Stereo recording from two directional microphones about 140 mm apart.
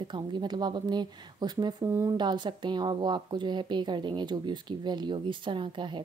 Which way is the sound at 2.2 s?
30° right (ahead or behind).